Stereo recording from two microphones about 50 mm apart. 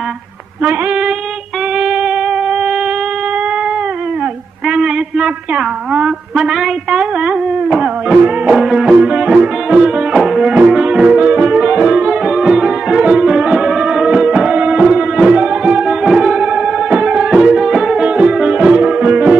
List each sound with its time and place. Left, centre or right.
0.6 s female singing: right
1.8 s a sound: centre
4.6 s a man's voice: centre
8.5 s music: centre
10.1 s music: centre
18.0 s music: right